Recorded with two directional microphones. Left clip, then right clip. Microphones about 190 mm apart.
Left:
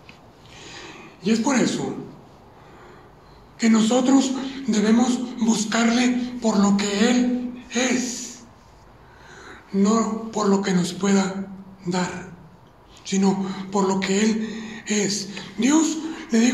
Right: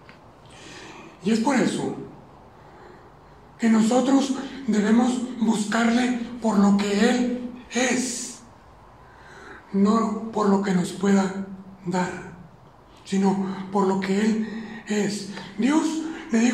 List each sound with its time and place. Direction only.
0.6 s a sound: 20° left (ahead or behind)
3.5 s a woman's voice: 25° left (ahead or behind)
7.7 s speech: 15° left (ahead or behind)
9.3 s a man's voice: 25° left (ahead or behind)